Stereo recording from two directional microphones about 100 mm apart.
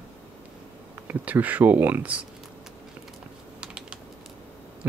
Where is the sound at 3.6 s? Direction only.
10° right (ahead or behind).